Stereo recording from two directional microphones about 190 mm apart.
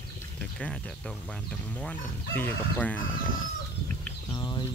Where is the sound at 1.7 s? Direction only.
5° left (ahead or behind).